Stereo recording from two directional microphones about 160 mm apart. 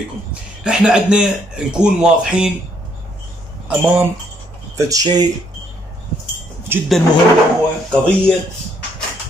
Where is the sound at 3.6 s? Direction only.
10° right (ahead or behind).